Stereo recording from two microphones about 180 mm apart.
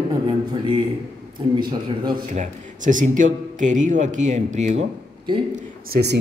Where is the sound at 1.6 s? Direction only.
25° right (ahead or behind).